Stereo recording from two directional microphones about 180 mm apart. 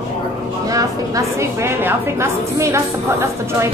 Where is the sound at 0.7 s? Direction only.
20° right (ahead or behind).